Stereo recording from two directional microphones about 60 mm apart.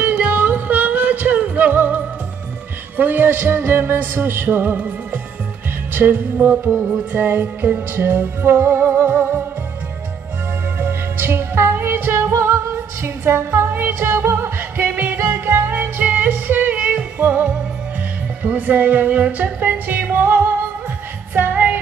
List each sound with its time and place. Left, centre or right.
0.0 s music: right
10.8 s music: right